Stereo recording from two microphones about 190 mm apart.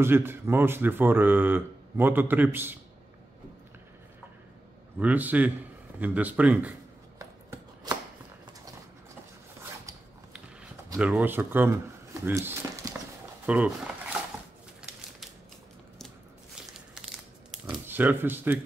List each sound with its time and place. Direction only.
0.0 s speech: 10° right (ahead or behind)
4.9 s speech: 10° right (ahead or behind)
7.9 s shuffling cards: 20° right (ahead or behind)
11.0 s speech: 5° right (ahead or behind)
17.5 s a sound: 5° right (ahead or behind)